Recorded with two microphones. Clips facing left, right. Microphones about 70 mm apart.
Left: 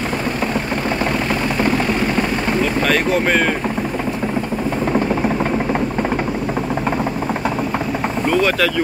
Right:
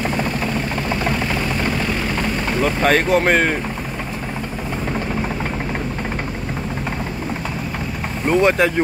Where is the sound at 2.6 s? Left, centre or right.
Right.